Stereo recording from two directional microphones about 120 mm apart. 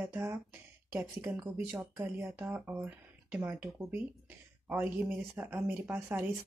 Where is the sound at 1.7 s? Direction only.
20° right (ahead or behind).